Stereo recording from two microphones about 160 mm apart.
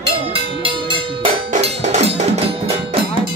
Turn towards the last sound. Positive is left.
turn(degrees=-45)  # may be behind; listen again after turning